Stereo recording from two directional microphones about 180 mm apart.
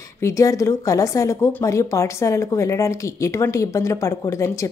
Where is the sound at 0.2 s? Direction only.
15° left (ahead or behind).